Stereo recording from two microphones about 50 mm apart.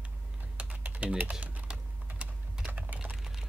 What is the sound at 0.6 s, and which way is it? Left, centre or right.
Typing, right.